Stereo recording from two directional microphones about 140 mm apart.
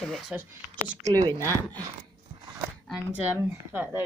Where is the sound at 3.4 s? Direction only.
15° right (ahead or behind).